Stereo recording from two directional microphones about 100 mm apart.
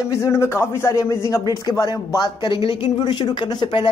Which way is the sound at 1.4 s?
40° left (ahead or behind).